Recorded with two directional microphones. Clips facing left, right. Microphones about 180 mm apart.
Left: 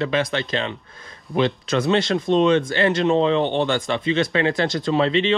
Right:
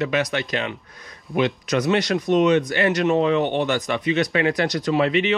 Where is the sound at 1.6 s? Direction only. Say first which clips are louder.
Left 1 dB; 25° left (ahead or behind).